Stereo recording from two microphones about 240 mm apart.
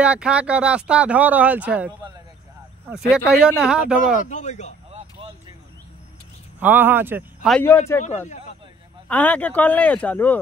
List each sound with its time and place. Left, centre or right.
0.0 s speech: centre
2.9 s speech: centre
4.2 s speech: left
6.6 s speech: centre
7.5 s speech: centre
8.0 s a man's voice: left
9.1 s speech: centre